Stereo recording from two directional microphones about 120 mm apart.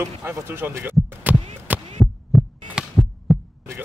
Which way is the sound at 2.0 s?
Centre (ahead or behind).